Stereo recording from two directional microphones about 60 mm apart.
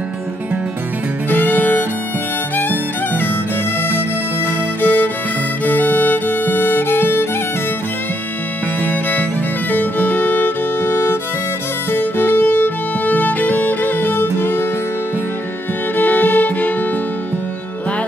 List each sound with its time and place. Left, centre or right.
1.3 s music: left
4.8 s music: left
9.7 s music: left
16.0 s music: left